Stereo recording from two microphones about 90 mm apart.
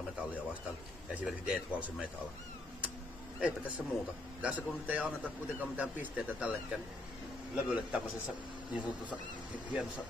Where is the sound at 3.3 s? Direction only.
15° right (ahead or behind).